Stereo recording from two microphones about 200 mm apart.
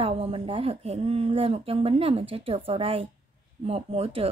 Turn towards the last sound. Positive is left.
turn(degrees=-30)  # may be behind; listen again after turning